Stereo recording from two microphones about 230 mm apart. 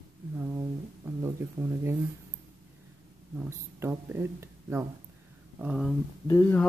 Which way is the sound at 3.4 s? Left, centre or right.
Centre.